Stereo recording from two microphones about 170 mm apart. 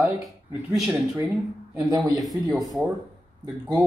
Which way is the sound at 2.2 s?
Centre (ahead or behind).